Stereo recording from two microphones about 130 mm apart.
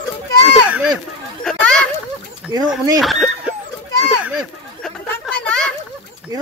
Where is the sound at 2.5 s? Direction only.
30° right (ahead or behind).